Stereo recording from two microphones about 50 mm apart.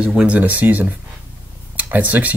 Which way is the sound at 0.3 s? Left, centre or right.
Right.